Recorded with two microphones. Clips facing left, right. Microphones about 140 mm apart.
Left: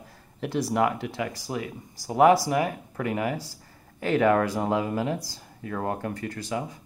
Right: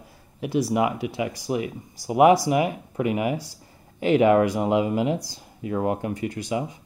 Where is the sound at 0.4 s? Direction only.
10° right (ahead or behind).